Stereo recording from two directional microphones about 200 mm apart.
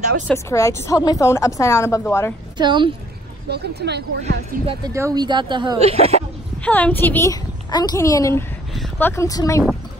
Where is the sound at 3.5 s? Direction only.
55° right (ahead or behind).